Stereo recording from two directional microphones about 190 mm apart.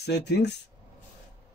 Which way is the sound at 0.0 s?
60° left (ahead or behind).